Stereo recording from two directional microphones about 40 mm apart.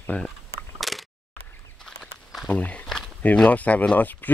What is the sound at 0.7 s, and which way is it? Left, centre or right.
Single-lens reflex camera, centre.